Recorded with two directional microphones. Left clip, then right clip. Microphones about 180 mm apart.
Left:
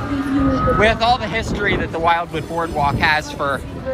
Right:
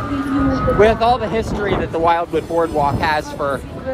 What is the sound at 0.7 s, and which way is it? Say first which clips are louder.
Speech: right 3 dB; 30° right (ahead or behind).